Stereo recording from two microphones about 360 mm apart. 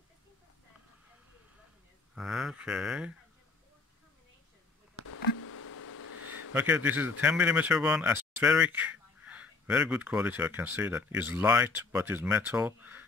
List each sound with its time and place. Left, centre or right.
2.1 s a man's voice: centre
5.0 s a sound: left
6.5 s a man's voice: centre